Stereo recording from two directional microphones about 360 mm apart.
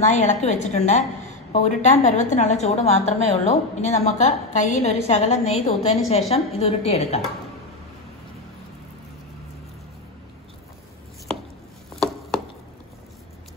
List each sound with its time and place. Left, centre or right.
0.0 s a woman's voice: centre